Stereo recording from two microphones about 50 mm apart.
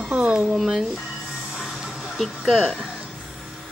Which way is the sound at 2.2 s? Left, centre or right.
Centre.